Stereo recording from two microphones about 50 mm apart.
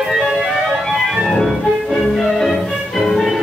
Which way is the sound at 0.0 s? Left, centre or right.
Centre.